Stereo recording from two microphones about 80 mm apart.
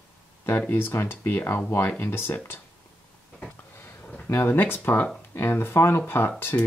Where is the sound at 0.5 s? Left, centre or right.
Left.